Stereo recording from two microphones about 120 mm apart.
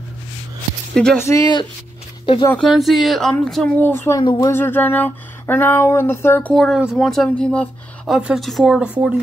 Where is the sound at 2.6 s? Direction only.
Centre (ahead or behind).